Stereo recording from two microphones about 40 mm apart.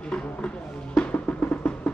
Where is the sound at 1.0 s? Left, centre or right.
Left.